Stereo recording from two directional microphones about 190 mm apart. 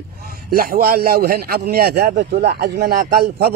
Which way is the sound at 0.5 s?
50° right (ahead or behind).